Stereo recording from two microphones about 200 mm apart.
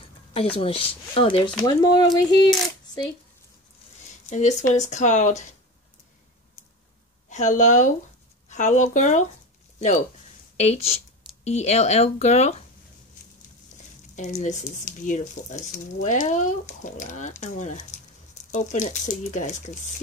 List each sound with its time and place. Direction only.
0.6 s speech: 25° left (ahead or behind)
4.3 s speech: 35° left (ahead or behind)
7.2 s speech: 35° left (ahead or behind)
10.6 s speech: 30° left (ahead or behind)
14.1 s speech: 35° left (ahead or behind)